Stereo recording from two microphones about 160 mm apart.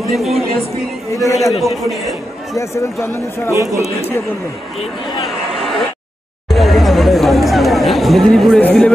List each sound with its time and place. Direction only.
0.1 s a man's voice: centre (ahead or behind)
1.1 s a man's voice: 20° left (ahead or behind)
1.6 s a man's voice: centre (ahead or behind)
2.5 s speech: 20° left (ahead or behind)
5.5 s a sound: centre (ahead or behind)
6.5 s chatter: centre (ahead or behind)